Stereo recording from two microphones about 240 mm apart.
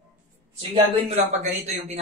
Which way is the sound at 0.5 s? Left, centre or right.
Right.